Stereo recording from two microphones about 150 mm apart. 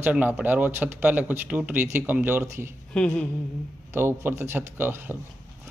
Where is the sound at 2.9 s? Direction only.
5° left (ahead or behind).